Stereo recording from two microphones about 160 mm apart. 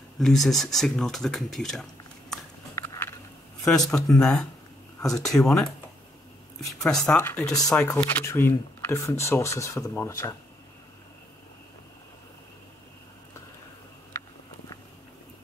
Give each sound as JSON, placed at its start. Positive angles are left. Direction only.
{"t": 0.2, "sound": "speech", "side_deg": 0}
{"t": 2.7, "sound": "a sound", "side_deg": 15}
{"t": 3.6, "sound": "speech", "side_deg": 5}